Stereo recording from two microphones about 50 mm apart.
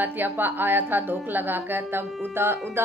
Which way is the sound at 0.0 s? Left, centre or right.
Right.